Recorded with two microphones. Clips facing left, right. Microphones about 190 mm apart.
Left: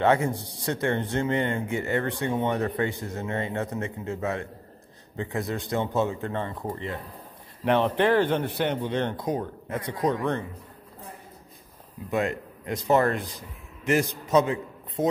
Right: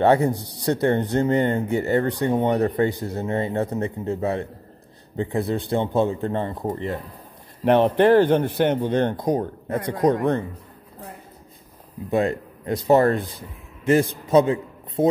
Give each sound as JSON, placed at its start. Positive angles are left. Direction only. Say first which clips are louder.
{"t": 0.0, "sound": "speech", "louder": "right 5 dB", "side_deg": -35}
{"t": 12.1, "sound": "speech", "louder": "right 5 dB", "side_deg": -35}
{"t": 14.2, "sound": "a sound", "louder": "right 5 dB", "side_deg": -30}